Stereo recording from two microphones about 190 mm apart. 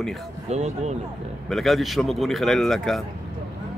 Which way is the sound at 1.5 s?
Centre (ahead or behind).